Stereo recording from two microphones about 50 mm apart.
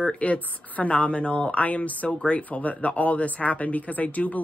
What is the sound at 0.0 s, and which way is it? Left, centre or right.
Speech, left.